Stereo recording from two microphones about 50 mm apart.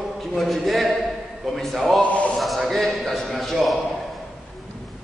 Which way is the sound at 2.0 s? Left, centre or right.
Left.